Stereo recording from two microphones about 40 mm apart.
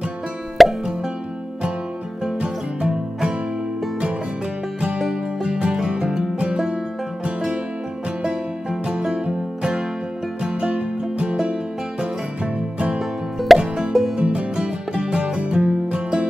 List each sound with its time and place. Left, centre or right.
0.6 s plop: centre
2.3 s music: right
4.7 s music: right
10.4 s music: right
12.5 s music: right
13.0 s plop: centre
13.6 s plop: right
14.1 s music: right